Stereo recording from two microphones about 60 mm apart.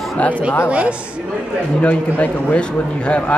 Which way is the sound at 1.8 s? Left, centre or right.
Left.